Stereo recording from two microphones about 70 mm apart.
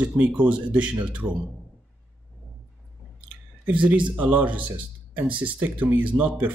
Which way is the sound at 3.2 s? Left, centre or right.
Right.